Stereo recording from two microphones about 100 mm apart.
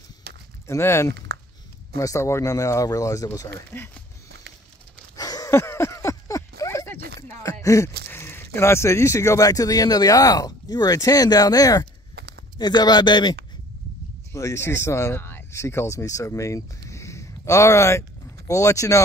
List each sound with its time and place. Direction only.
0.7 s speech: 25° left (ahead or behind)
3.7 s speech: 20° left (ahead or behind)
5.1 s wheeze: 40° left (ahead or behind)
5.5 s a sound: 25° left (ahead or behind)
7.4 s speech: 30° left (ahead or behind); by 13.4 s 50° left (ahead or behind)
14.3 s speech: 30° left (ahead or behind)